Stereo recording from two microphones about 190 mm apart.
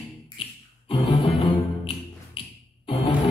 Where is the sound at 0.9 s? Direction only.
20° left (ahead or behind).